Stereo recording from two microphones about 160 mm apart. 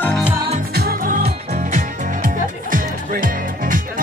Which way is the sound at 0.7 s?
65° right (ahead or behind).